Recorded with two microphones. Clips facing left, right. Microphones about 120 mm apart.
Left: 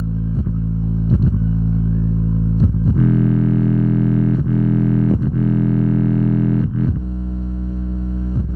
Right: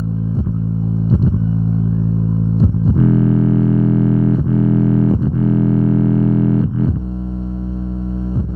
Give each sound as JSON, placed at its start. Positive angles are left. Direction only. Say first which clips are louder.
{"t": 1.0, "sound": "vehicle", "louder": "right 2 dB", "side_deg": -30}
{"t": 2.5, "sound": "music", "louder": "right 3 dB", "side_deg": -30}